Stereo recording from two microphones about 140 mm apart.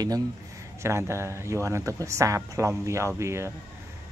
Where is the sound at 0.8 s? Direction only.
20° right (ahead or behind).